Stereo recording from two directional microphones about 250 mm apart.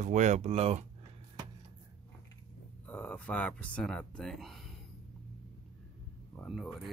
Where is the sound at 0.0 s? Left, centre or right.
Right.